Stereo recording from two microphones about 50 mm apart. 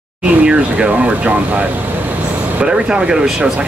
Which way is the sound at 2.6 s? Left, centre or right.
Centre.